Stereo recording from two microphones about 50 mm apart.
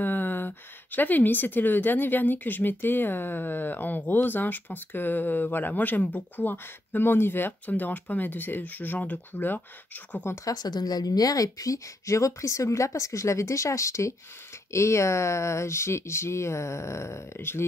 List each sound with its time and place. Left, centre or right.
0.0 s speech: left
7.6 s speech: left
10.3 s speech: left
11.7 s a woman's voice: left
14.7 s speech: left